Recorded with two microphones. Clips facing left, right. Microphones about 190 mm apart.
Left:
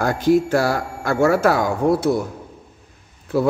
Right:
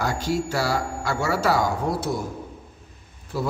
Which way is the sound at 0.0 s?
55° left (ahead or behind).